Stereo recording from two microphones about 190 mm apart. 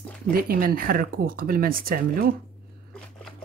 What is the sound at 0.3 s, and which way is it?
Speech, 50° right (ahead or behind).